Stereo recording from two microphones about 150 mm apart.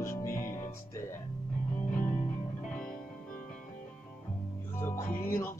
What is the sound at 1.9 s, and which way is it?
Music, 60° left (ahead or behind).